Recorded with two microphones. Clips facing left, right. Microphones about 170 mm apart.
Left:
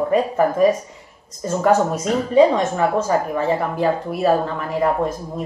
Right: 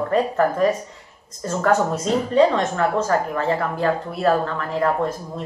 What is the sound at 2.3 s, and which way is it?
A woman's voice, 10° left (ahead or behind).